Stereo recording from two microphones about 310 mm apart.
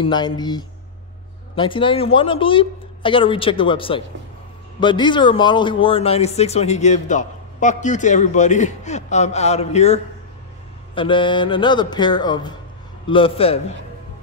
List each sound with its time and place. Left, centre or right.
0.0 s speech: centre